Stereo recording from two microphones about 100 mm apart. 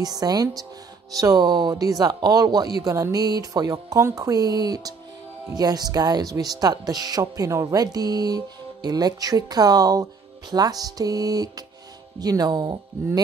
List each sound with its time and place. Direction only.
0.0 s speech: 40° right (ahead or behind)